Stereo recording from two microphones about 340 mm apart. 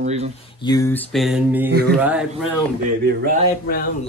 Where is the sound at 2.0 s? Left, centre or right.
Centre.